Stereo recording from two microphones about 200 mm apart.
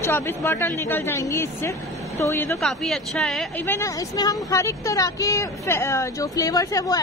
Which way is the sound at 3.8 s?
15° left (ahead or behind).